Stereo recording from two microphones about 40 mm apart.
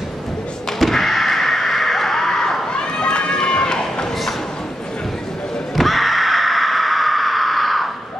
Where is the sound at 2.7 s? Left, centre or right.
Left.